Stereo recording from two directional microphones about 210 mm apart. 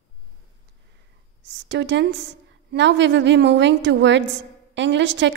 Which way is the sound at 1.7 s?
60° right (ahead or behind).